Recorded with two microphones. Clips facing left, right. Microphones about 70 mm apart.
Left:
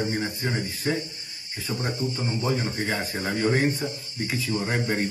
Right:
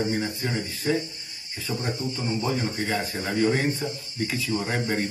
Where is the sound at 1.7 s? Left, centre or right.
Centre.